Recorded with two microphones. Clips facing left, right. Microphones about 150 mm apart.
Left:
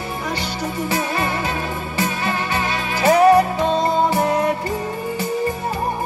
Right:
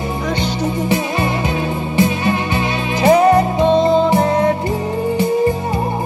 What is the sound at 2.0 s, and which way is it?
Music, 20° right (ahead or behind).